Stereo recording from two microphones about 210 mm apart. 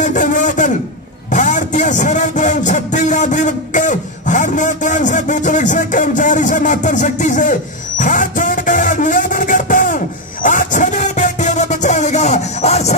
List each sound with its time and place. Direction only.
0.0 s a sound: 35° left (ahead or behind)
1.3 s speech: 35° left (ahead or behind)
8.0 s music: 40° left (ahead or behind)